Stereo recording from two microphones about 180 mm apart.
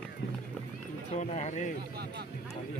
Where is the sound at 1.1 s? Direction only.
40° left (ahead or behind).